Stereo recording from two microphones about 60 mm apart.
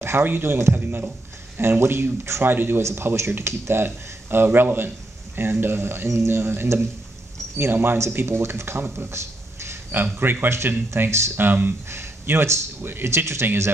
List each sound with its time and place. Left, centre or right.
0.0 s speech: right
1.6 s speech: right
2.5 s speech: right
8.9 s a sound: right
10.1 s speech: right
11.0 s speech: right
11.3 s speech: right